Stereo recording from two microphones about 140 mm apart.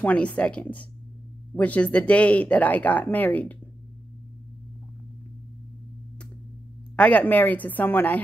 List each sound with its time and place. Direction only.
0.0 s speech: 10° left (ahead or behind)
7.0 s speech: 10° left (ahead or behind)